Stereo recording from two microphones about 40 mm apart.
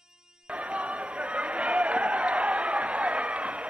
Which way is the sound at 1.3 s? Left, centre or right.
Right.